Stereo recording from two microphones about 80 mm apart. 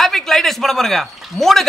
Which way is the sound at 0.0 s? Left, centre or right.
Centre.